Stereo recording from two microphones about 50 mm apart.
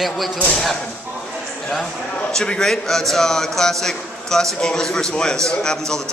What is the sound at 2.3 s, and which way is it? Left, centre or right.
A man's voice, centre.